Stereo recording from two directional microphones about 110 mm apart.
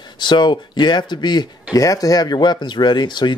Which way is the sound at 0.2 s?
45° left (ahead or behind).